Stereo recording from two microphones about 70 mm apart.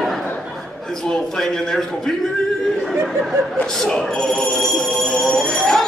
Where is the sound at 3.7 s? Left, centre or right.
Centre.